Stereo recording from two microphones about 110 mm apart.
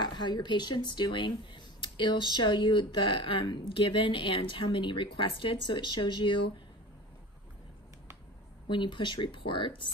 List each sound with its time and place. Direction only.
0.0 s speech: 45° left (ahead or behind)
8.6 s speech: 45° left (ahead or behind)